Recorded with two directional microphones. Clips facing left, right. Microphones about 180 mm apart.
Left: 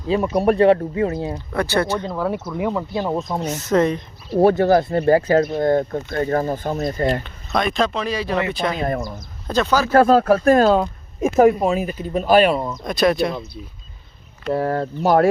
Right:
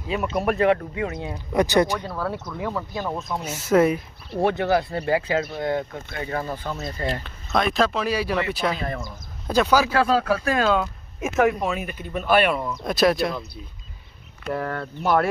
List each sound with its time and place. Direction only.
0.1 s speech: 30° left (ahead or behind)
1.5 s speech: 15° right (ahead or behind)
2.0 s speech: 15° left (ahead or behind)
3.2 s speech: 30° left (ahead or behind)
3.4 s speech: 10° right (ahead or behind)
4.4 s speech: 40° left (ahead or behind)
7.2 s speech: centre (ahead or behind)
8.7 s speech: 45° left (ahead or behind)
9.5 s speech: 10° right (ahead or behind)
9.9 s speech: 50° left (ahead or behind); by 12.7 s 35° left (ahead or behind)
12.8 s speech: centre (ahead or behind)
14.5 s speech: 35° left (ahead or behind)